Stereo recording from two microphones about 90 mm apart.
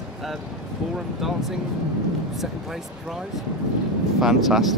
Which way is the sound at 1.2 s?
5° right (ahead or behind).